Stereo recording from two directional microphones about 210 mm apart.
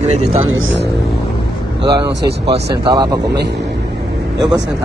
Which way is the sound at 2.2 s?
50° right (ahead or behind).